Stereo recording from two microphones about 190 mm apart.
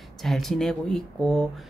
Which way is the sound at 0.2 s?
Centre (ahead or behind).